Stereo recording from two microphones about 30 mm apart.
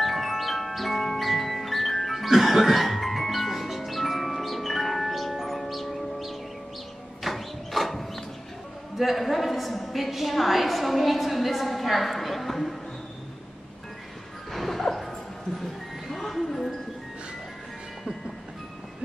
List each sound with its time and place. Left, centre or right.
0.0 s music: centre
7.2 s a sound: centre
8.9 s a woman's voice: centre
14.5 s music: centre